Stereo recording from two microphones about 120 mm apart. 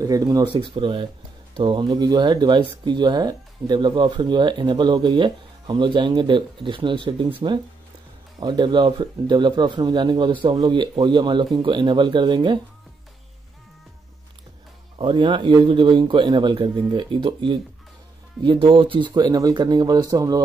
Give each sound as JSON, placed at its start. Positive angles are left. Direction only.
{"t": 0.0, "sound": "speech", "side_deg": -30}
{"t": 0.5, "sound": "speech", "side_deg": -45}
{"t": 15.0, "sound": "speech", "side_deg": -45}